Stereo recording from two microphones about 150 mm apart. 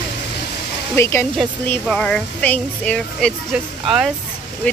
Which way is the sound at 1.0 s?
15° left (ahead or behind).